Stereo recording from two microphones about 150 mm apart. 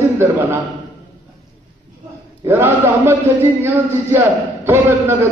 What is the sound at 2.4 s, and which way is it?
A man's voice, 15° right (ahead or behind).